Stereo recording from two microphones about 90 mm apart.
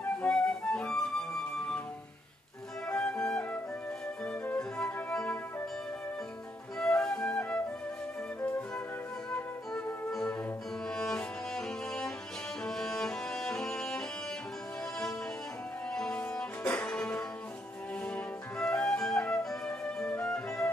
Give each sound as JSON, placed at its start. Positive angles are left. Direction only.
{"t": 0.3, "sound": "music", "side_deg": 10}
{"t": 2.9, "sound": "music", "side_deg": 10}
{"t": 4.6, "sound": "music", "side_deg": 10}
{"t": 6.8, "sound": "music", "side_deg": 5}
{"t": 15.9, "sound": "music", "side_deg": 10}
{"t": 18.0, "sound": "flute", "side_deg": 10}